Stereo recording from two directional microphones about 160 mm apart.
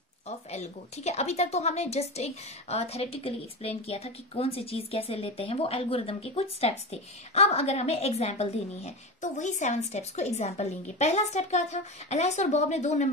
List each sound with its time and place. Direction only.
0.5 s a woman's voice: 40° left (ahead or behind)